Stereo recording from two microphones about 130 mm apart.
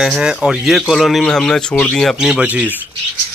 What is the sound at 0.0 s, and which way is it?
Speech, centre (ahead or behind).